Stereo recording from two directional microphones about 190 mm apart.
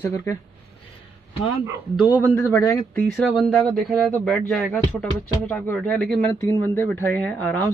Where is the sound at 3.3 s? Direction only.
Centre (ahead or behind).